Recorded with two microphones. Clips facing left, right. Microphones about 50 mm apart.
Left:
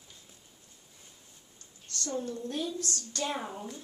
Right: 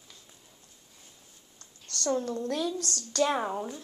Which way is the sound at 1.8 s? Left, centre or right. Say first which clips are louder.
Right 5 dB; right.